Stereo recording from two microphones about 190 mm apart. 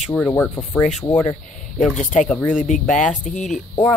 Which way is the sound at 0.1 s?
10° left (ahead or behind).